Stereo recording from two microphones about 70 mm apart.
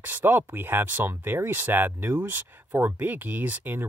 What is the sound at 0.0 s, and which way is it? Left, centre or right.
Speech, right.